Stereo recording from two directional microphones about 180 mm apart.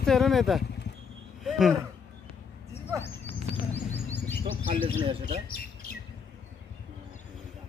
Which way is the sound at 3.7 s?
10° left (ahead or behind).